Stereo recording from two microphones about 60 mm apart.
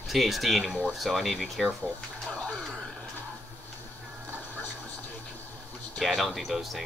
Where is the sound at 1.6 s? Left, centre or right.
Centre.